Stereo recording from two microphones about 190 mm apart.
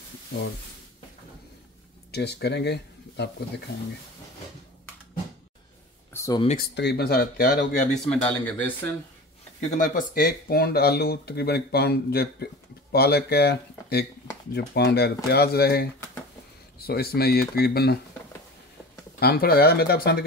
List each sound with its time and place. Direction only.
2.1 s speech: 60° left (ahead or behind)
6.1 s a sound: 15° left (ahead or behind)
6.7 s speech: 60° left (ahead or behind); by 8.0 s 45° left (ahead or behind)
8.0 s speech: 5° left (ahead or behind)
9.7 s speech: 45° left (ahead or behind)
19.1 s speech: 55° left (ahead or behind)